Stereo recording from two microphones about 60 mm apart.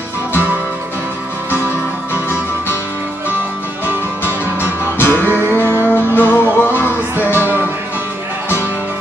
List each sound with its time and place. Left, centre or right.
4.6 s music: left